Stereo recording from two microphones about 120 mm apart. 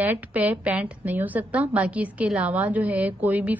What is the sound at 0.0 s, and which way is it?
A woman's voice, 15° right (ahead or behind).